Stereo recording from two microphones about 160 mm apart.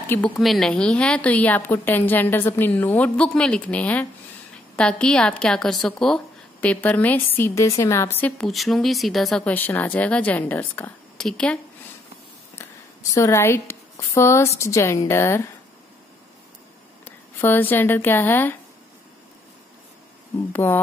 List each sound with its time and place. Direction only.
0.1 s a woman's voice: 5° left (ahead or behind)
8.5 s a woman's voice: centre (ahead or behind)
13.1 s a woman's voice: 15° left (ahead or behind)
17.0 s speech: 10° left (ahead or behind)
20.5 s a woman's voice: 10° left (ahead or behind)